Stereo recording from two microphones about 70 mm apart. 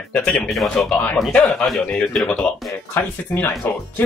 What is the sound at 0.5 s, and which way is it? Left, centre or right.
Speech, centre.